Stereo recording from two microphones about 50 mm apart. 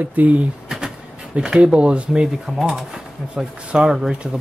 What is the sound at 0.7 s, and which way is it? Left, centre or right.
Bee, centre.